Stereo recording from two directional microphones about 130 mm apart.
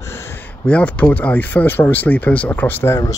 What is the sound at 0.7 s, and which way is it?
Speech, 10° left (ahead or behind).